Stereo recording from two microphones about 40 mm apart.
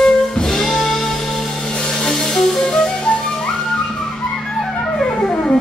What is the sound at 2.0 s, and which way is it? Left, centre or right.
Music, centre.